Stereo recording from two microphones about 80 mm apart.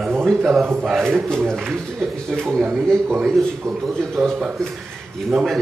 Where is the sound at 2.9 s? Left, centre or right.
Centre.